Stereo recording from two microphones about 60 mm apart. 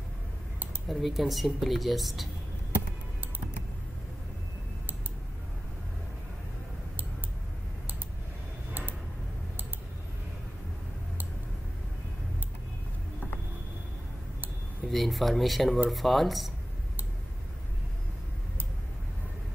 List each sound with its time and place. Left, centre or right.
0.8 s speech: centre
14.9 s speech: centre